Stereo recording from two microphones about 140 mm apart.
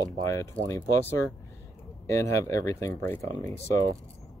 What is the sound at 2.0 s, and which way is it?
Speech, 20° left (ahead or behind).